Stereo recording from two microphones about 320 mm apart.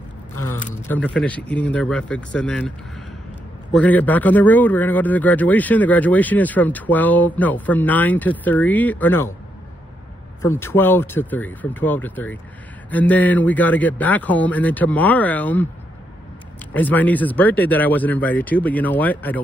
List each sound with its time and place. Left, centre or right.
0.8 s speech: centre
3.7 s speech: centre
10.4 s speech: centre
16.7 s speech: centre